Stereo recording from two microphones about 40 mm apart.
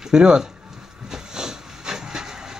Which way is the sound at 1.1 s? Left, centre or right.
Centre.